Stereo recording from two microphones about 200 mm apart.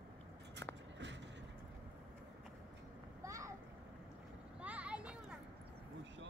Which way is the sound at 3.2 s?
15° right (ahead or behind).